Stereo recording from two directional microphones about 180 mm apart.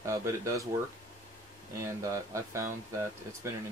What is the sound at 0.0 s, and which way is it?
Speech, 15° right (ahead or behind).